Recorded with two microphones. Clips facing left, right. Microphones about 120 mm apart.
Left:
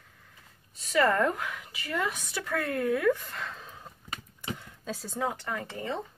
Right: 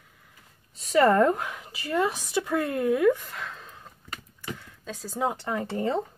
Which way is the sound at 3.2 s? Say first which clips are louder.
Right 1 dB; centre (ahead or behind).